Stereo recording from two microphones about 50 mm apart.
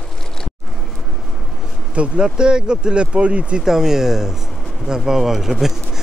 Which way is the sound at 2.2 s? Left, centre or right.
Centre.